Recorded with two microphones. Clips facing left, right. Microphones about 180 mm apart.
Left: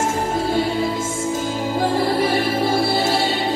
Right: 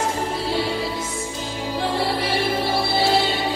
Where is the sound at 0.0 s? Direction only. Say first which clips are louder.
Left 3 dB; 45° left (ahead or behind).